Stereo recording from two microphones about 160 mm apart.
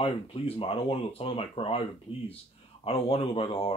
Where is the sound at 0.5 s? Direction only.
35° left (ahead or behind).